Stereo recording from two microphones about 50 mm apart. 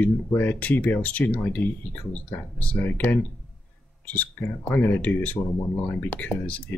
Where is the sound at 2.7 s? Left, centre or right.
Left.